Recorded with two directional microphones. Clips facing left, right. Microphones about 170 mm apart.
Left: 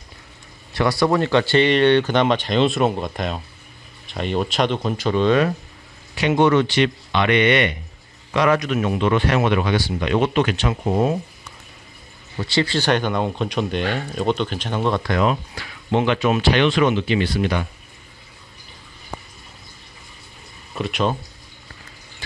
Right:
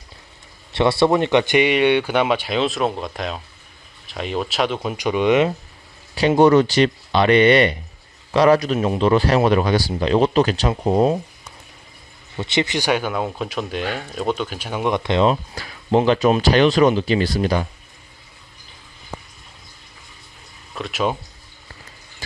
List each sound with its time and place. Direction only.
0.7 s speech: 25° right (ahead or behind)
6.1 s speech: 35° right (ahead or behind)
12.4 s speech: 20° right (ahead or behind)
15.5 s speech: 35° right (ahead or behind)
20.7 s speech: centre (ahead or behind)